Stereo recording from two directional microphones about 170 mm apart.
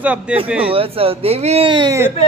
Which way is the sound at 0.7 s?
35° right (ahead or behind).